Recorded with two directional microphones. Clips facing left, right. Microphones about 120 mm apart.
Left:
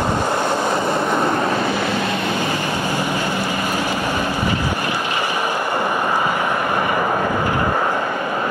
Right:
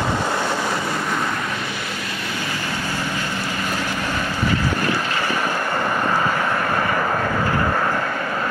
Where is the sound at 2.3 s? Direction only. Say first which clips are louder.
Left 6 dB; 20° left (ahead or behind).